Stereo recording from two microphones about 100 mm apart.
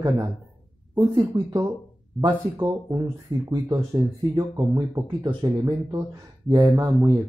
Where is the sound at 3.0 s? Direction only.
35° right (ahead or behind).